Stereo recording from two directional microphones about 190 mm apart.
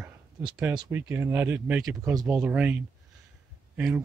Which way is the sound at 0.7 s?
15° right (ahead or behind).